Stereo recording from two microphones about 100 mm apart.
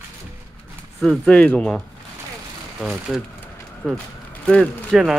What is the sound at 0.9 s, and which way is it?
Speech, centre (ahead or behind).